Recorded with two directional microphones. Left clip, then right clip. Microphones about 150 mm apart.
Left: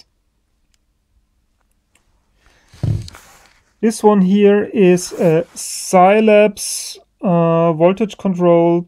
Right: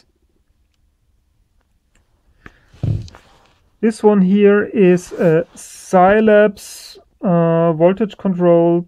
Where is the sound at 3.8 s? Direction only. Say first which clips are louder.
Left 1 dB; 5° left (ahead or behind).